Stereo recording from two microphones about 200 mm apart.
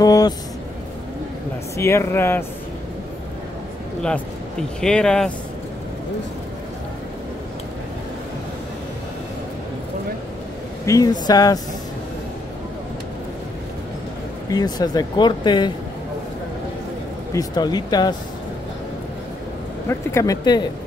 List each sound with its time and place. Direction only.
0.0 s a sound: 20° left (ahead or behind)
1.8 s speech: 15° left (ahead or behind)
4.7 s speech: 5° left (ahead or behind)
10.9 s speech: 20° left (ahead or behind)
14.5 s speech: 20° left (ahead or behind)
17.3 s speech: 20° left (ahead or behind)
19.9 s speech: 15° left (ahead or behind)